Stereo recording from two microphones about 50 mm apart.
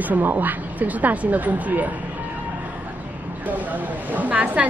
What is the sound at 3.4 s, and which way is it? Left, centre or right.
A woman's voice, right.